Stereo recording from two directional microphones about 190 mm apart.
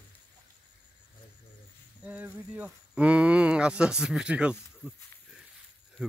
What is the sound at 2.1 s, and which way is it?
Speech, 10° right (ahead or behind).